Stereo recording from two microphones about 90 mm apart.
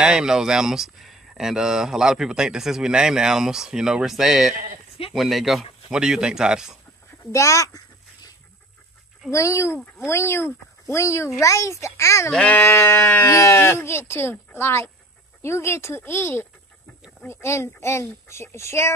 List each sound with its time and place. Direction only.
0.0 s speech: 10° right (ahead or behind)
7.3 s a child's voice: 35° left (ahead or behind)
9.3 s a child's voice: 35° left (ahead or behind)
12.3 s sheep: 10° left (ahead or behind)
12.5 s speech: 25° left (ahead or behind)